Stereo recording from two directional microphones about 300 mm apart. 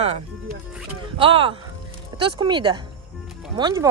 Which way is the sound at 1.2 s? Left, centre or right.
Centre.